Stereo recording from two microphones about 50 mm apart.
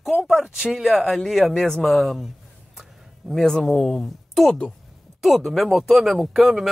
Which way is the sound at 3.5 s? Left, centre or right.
Centre.